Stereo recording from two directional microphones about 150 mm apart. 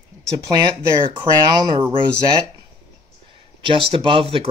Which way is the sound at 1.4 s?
25° right (ahead or behind).